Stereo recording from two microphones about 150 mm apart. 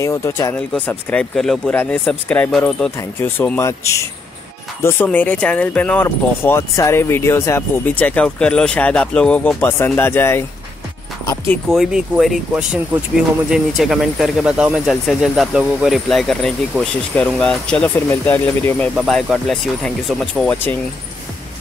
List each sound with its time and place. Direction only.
0.0 s speech: 20° left (ahead or behind)
11.7 s speech: centre (ahead or behind)
18.9 s speech: centre (ahead or behind)